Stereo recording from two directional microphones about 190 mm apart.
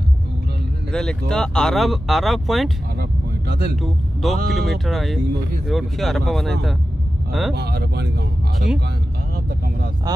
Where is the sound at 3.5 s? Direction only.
55° right (ahead or behind).